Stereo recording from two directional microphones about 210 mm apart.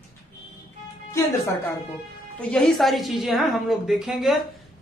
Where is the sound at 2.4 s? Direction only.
5° left (ahead or behind).